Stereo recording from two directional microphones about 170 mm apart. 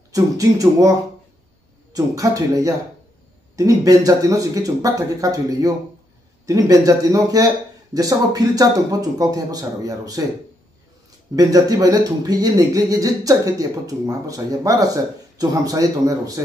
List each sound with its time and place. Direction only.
0.1 s speech: 20° right (ahead or behind)
2.0 s speech: 20° right (ahead or behind)
11.3 s speech: 20° right (ahead or behind)